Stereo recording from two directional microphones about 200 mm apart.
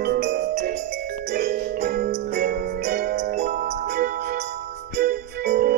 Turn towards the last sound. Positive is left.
turn(degrees=-55)  # may be behind; listen again after turning